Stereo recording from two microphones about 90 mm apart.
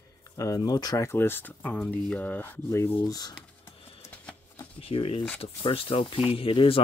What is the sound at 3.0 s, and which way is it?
Speech, 45° left (ahead or behind).